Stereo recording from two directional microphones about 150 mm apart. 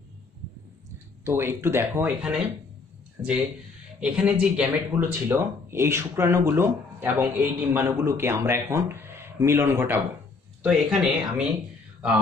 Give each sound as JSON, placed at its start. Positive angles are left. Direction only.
{"t": 1.2, "sound": "speech", "side_deg": -15}
{"t": 10.6, "sound": "speech", "side_deg": -5}